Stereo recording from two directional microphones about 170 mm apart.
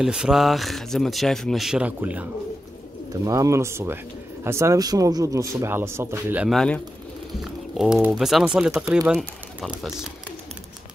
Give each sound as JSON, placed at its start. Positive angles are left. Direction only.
{"t": 0.0, "sound": "speech", "side_deg": -5}
{"t": 3.1, "sound": "speech", "side_deg": -20}
{"t": 6.5, "sound": "speech", "side_deg": 5}